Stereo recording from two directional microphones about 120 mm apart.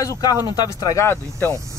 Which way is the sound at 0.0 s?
30° left (ahead or behind).